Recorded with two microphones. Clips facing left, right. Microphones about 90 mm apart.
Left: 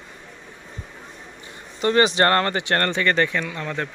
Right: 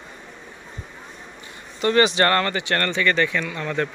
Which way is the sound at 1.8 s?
30° left (ahead or behind).